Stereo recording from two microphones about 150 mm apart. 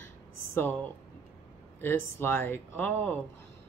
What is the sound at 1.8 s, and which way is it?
Speech, 15° left (ahead or behind).